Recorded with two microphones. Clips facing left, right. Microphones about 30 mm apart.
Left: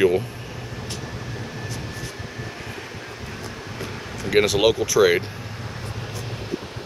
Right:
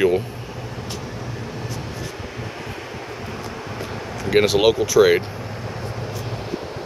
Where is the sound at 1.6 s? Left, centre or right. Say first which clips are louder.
Right 2 dB; centre.